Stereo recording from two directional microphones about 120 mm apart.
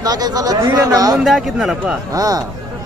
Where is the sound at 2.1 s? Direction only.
30° right (ahead or behind).